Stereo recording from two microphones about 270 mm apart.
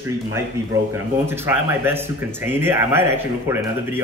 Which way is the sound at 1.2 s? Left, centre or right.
Centre.